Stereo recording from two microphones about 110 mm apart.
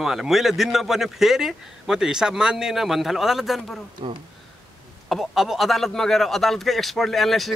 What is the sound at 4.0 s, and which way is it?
Speech, 55° right (ahead or behind).